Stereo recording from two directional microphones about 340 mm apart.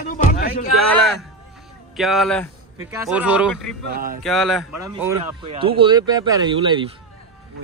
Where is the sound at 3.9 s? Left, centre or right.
Right.